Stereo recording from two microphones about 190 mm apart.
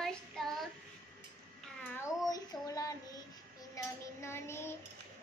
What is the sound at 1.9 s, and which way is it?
Child singing, 20° left (ahead or behind).